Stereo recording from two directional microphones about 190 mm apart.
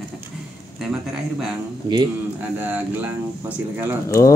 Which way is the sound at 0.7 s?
5° right (ahead or behind).